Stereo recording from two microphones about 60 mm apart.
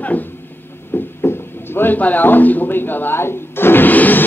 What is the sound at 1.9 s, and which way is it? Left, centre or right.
Speech, left.